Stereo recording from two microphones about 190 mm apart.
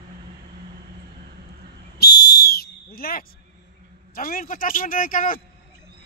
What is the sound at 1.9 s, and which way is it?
Whistle, 55° left (ahead or behind).